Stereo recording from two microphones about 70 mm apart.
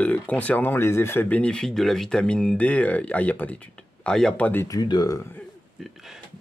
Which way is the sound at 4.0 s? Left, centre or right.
Centre.